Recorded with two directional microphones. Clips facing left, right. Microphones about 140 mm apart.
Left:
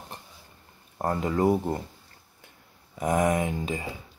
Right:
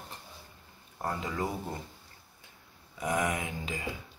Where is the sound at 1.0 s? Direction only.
45° left (ahead or behind).